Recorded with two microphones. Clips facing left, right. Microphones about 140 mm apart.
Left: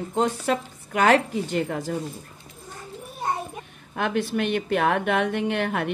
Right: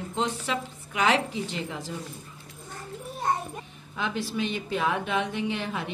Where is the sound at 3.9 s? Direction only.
55° left (ahead or behind).